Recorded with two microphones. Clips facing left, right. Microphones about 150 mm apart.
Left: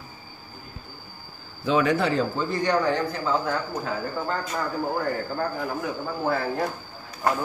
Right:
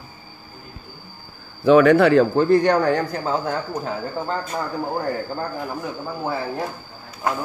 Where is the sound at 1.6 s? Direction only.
60° right (ahead or behind); by 3.5 s 40° right (ahead or behind).